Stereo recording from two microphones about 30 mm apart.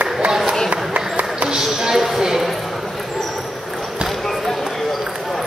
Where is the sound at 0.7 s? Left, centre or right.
Right.